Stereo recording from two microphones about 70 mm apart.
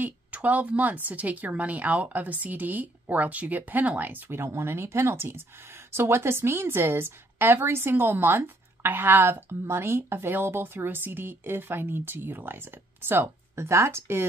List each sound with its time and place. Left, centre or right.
0.0 s speech: right